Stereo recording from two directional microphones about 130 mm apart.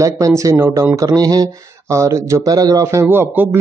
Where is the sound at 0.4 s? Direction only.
25° right (ahead or behind).